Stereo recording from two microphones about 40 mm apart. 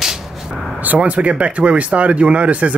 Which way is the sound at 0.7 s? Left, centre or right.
Right.